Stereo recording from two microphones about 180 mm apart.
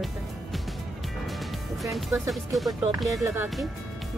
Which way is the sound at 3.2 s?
10° right (ahead or behind).